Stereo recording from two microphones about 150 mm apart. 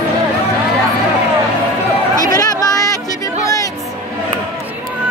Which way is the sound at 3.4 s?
25° left (ahead or behind).